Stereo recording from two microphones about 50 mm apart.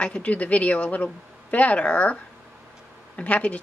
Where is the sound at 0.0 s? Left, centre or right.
Left.